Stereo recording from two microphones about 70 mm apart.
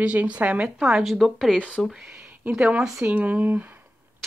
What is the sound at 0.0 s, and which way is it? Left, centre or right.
Speech, right.